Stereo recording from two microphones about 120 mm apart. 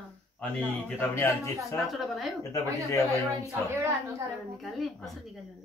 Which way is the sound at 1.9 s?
Centre (ahead or behind).